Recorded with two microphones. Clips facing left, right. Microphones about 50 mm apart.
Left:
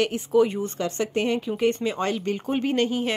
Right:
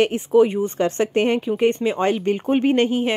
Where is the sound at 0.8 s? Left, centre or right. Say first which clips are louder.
Right 6 dB; right.